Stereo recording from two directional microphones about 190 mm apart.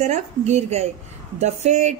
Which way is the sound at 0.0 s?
35° right (ahead or behind).